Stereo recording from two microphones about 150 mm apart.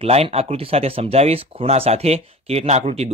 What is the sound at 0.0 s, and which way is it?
Speech, 40° right (ahead or behind).